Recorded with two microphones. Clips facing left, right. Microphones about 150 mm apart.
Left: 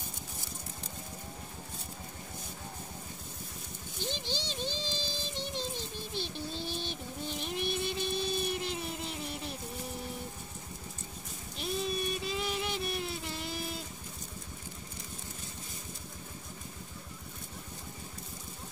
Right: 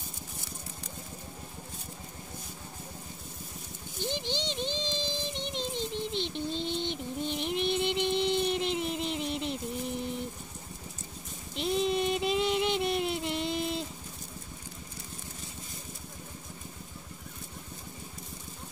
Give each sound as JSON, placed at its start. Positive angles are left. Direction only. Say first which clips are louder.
{"t": 4.0, "sound": "music", "louder": "right 4 dB", "side_deg": -15}
{"t": 11.8, "sound": "music", "louder": "right 7 dB", "side_deg": -25}